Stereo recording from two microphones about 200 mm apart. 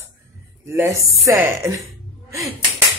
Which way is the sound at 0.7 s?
15° right (ahead or behind).